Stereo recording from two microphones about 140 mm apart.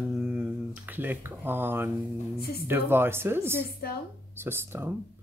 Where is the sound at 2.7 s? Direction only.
15° right (ahead or behind).